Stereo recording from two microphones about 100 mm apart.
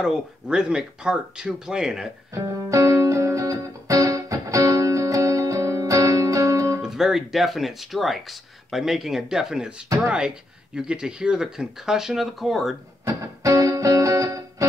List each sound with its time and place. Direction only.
0.0 s speech: 10° right (ahead or behind)
2.3 s music: 30° right (ahead or behind)
6.8 s speech: 5° right (ahead or behind)
13.0 s music: 35° right (ahead or behind)